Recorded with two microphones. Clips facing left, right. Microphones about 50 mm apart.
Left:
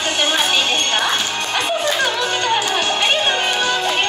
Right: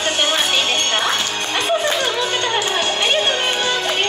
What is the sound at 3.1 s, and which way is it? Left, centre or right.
Music, left.